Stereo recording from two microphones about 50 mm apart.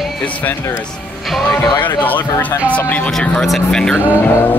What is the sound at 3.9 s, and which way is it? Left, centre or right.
Speech, right.